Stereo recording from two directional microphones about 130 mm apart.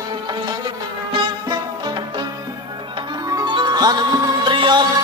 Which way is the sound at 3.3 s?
30° right (ahead or behind).